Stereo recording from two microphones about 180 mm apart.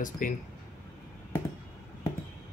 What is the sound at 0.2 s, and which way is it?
Speech, 50° left (ahead or behind).